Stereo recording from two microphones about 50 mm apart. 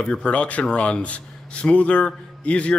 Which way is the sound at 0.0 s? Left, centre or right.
Left.